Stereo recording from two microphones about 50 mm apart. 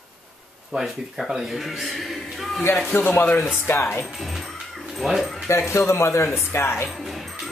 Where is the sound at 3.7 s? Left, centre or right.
Left.